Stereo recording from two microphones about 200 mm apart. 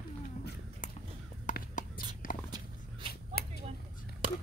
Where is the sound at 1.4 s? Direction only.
45° left (ahead or behind).